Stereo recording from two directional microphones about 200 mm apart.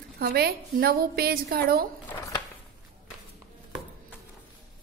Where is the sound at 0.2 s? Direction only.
45° right (ahead or behind).